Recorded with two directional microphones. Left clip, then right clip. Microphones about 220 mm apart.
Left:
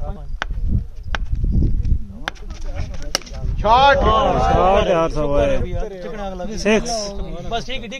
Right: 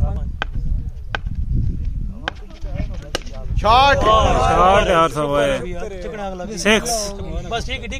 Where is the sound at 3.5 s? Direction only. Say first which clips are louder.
Even; 60° right (ahead or behind).